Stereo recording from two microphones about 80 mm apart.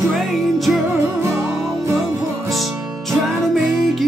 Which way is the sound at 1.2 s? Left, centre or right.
Right.